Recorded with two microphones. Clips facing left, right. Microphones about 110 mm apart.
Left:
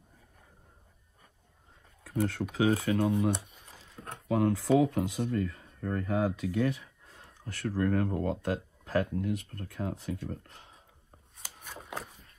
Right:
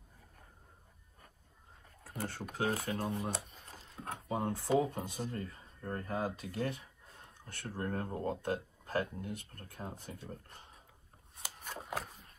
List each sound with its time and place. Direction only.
2.5 s speech: 65° left (ahead or behind)
4.3 s speech: 85° left